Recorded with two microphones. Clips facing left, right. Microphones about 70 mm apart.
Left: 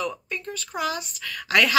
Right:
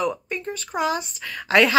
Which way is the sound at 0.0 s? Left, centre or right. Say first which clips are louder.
Right 4 dB; right.